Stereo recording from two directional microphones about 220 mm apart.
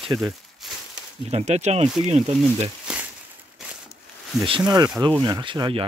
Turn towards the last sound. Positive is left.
turn(degrees=-20)  # may be behind; listen again after turning